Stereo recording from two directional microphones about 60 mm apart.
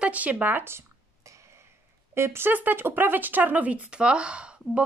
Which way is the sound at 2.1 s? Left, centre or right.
Right.